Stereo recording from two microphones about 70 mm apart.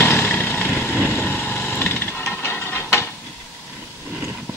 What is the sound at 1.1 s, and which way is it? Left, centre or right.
Wood, left.